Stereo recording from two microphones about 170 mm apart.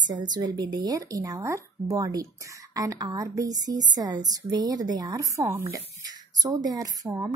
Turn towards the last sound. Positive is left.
turn(degrees=-20)  # may be behind; listen again after turning